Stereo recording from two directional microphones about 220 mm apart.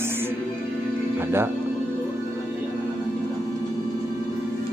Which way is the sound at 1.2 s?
10° right (ahead or behind).